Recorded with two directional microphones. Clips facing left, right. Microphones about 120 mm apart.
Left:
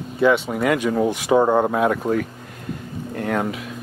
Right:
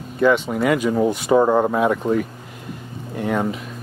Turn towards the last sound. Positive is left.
turn(degrees=0)  # may be behind; listen again after turning